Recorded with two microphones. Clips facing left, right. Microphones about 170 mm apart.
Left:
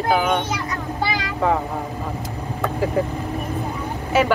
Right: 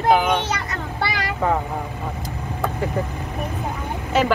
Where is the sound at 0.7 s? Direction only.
70° right (ahead or behind).